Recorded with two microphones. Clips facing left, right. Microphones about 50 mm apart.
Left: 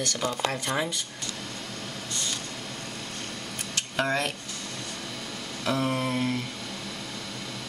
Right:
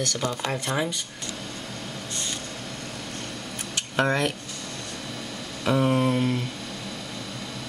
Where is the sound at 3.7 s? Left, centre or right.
Right.